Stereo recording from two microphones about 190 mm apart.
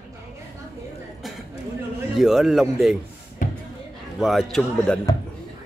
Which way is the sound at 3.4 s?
45° left (ahead or behind).